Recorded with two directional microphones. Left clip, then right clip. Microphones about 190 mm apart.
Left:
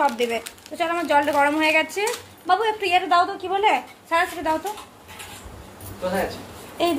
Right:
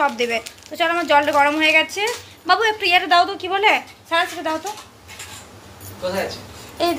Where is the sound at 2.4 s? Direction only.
15° right (ahead or behind).